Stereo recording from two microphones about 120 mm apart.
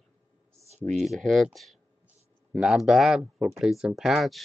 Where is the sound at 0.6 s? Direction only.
65° right (ahead or behind).